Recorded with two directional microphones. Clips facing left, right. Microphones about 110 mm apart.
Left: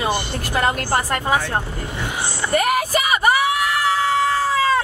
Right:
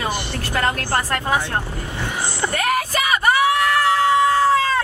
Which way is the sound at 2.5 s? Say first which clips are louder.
Left 4 dB; 10° left (ahead or behind).